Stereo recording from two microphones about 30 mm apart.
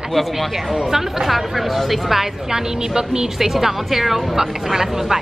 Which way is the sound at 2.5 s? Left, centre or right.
Right.